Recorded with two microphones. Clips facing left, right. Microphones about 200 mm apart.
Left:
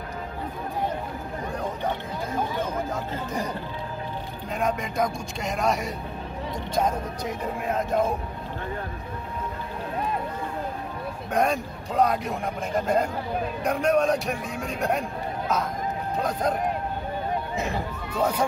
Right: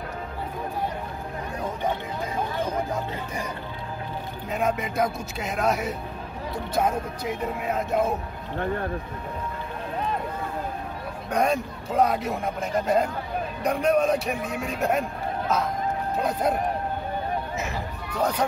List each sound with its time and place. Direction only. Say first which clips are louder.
4.5 s a man's voice: right 1 dB; 5° right (ahead or behind)
11.2 s a man's voice: right 1 dB; centre (ahead or behind)
16.2 s speech: right 1 dB; 10° right (ahead or behind)
17.6 s speech: left 2 dB; 30° left (ahead or behind)